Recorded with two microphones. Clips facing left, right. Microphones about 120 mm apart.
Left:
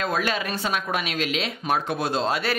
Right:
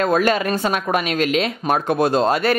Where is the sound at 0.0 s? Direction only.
45° right (ahead or behind).